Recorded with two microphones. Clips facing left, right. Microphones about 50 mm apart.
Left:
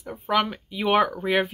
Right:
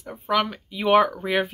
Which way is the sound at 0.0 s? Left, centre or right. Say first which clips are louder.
Even; centre.